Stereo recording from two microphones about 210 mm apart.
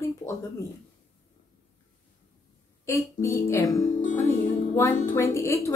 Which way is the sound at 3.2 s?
15° left (ahead or behind).